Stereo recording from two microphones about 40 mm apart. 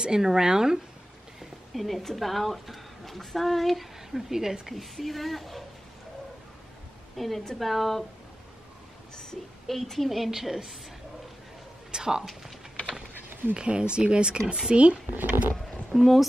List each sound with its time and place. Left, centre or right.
0.0 s a woman's voice: centre
1.4 s a woman's voice: centre
7.2 s a woman's voice: centre
9.1 s speech: centre
9.7 s a woman's voice: centre
11.9 s speech: centre
13.6 s speech: right
15.1 s speech: right
16.0 s a woman's voice: centre